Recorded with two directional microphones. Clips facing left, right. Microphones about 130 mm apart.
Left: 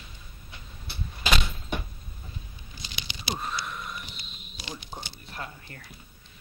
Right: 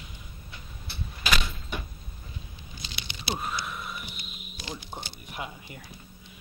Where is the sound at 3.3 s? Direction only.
5° right (ahead or behind).